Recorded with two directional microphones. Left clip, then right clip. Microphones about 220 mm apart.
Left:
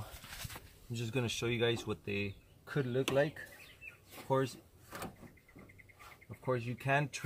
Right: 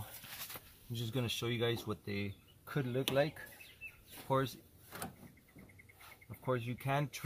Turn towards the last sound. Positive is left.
turn(degrees=-10)  # may be behind; listen again after turning